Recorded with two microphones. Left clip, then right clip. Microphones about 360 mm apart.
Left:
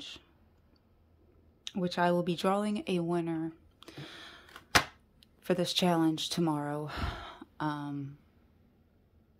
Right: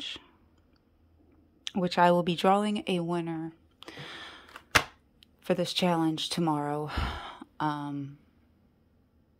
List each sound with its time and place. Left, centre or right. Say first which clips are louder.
1.6 s a woman's voice: right 6 dB; centre